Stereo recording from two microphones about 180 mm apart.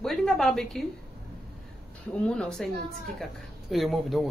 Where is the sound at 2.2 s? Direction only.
5° left (ahead or behind).